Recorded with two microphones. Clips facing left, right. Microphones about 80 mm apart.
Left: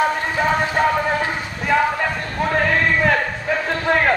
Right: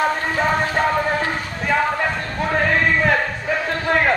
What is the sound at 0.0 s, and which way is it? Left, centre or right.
Music, centre.